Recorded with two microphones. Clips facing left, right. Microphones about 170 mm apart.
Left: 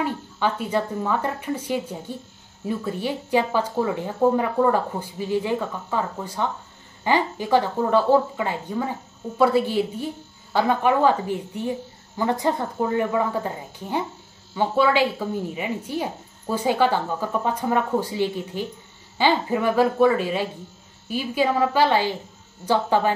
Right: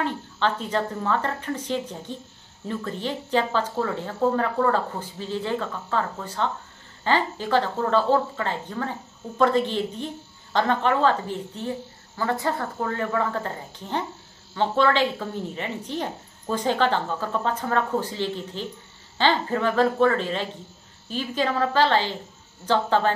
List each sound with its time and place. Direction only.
0.0 s speech: 10° left (ahead or behind)